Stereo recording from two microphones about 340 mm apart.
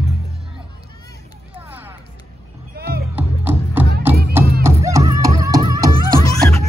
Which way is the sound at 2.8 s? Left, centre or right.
Right.